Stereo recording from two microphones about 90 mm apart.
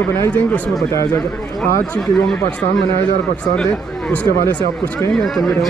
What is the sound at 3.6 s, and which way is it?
Speech, 10° left (ahead or behind).